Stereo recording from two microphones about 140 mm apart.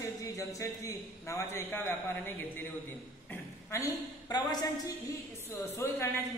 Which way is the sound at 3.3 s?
20° left (ahead or behind).